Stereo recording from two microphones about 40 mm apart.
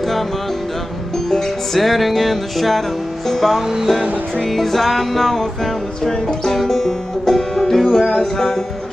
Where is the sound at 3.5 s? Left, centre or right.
Centre.